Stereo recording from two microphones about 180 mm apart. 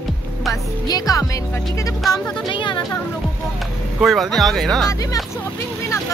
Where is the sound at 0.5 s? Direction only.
20° left (ahead or behind).